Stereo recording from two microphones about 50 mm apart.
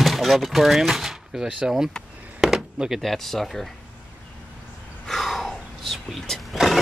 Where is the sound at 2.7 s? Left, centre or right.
Centre.